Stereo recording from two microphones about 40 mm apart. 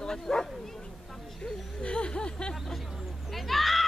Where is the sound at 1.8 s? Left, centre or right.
Left.